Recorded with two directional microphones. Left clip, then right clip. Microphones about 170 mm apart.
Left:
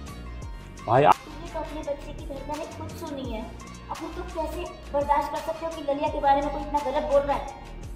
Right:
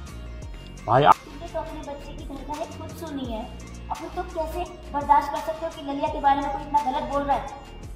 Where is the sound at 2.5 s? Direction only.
Centre (ahead or behind).